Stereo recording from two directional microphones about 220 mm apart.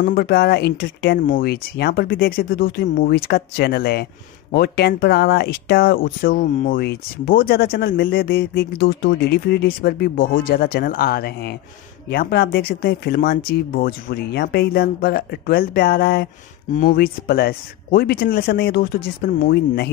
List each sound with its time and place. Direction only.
0.0 s speech: 45° left (ahead or behind)